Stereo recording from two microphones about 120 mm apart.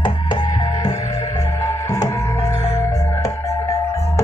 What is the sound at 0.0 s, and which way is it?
Music, 40° left (ahead or behind).